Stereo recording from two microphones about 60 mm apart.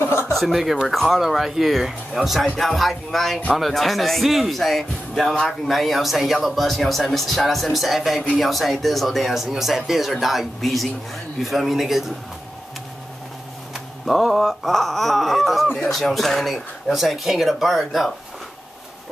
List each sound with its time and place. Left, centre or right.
0.0 s chuckle: left
0.4 s speech: centre
14.0 s speech: centre